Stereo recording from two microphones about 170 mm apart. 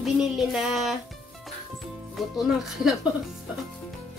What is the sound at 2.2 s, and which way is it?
Speech, centre (ahead or behind).